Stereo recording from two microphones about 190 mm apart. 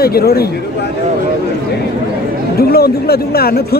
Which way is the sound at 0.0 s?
55° left (ahead or behind).